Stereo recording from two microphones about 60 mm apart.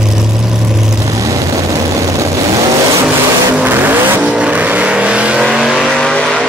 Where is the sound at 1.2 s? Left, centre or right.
Right.